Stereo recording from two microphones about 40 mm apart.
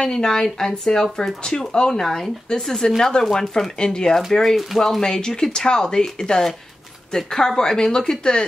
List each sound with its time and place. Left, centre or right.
0.0 s speech: centre
4.3 s speech: centre